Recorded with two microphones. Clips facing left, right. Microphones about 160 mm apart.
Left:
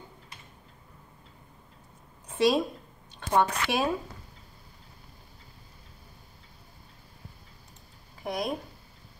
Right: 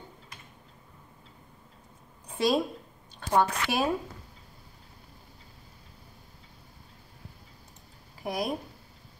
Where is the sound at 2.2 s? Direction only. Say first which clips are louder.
Left 2 dB; centre (ahead or behind).